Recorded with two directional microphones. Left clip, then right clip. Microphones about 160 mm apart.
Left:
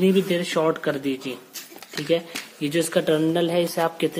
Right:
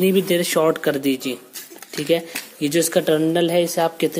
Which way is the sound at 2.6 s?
25° right (ahead or behind).